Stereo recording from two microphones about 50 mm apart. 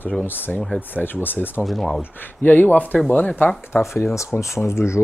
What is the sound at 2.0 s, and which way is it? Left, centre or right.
Speech, left.